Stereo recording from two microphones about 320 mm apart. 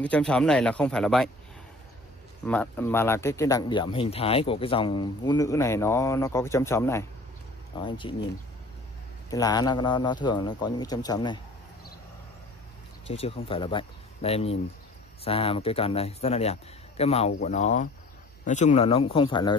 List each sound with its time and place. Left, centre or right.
0.0 s speech: centre
2.4 s speech: centre
9.3 s speech: centre
13.1 s a man's voice: centre